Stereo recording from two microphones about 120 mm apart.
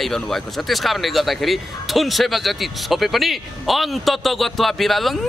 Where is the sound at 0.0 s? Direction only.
Centre (ahead or behind).